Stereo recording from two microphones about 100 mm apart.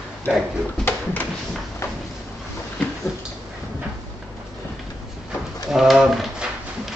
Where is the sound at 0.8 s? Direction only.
20° left (ahead or behind).